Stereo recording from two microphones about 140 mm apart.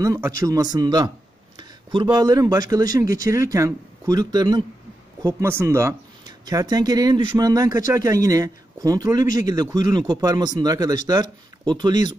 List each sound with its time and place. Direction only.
0.0 s a man's voice: 25° right (ahead or behind)
1.6 s a sound: 35° right (ahead or behind)
2.0 s a man's voice: 25° right (ahead or behind)
5.2 s a man's voice: 20° right (ahead or behind)